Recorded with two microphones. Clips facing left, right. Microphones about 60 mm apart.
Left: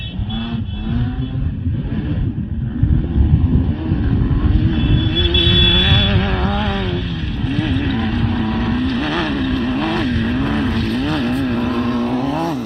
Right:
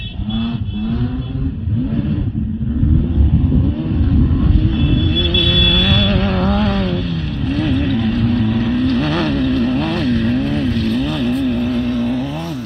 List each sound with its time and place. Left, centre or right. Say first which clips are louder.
0.3 s vehicle: right 4 dB; centre
4.1 s vehicle: right 3 dB; centre
4.4 s vehicle: right 1 dB; centre
4.9 s music: right 1 dB; left
5.7 s a sound: right 1 dB; centre
7.4 s vehicle: right 2 dB; centre
7.8 s vehicle: right 2 dB; centre
8.8 s vehicle: right 2 dB; left
10.4 s vehicle: right 1 dB; left
12.2 s vehicle: left 4 dB; left